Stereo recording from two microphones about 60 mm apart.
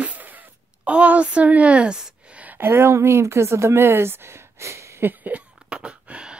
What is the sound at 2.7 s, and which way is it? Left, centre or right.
Speech, right.